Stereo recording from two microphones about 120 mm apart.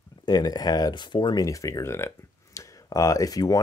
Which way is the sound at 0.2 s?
35° left (ahead or behind).